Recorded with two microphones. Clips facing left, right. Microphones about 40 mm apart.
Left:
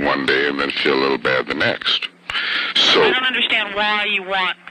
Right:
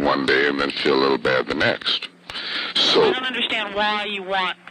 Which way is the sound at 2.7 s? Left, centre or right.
Left.